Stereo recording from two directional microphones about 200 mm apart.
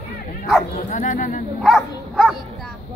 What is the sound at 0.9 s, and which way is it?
Chatter, 40° left (ahead or behind).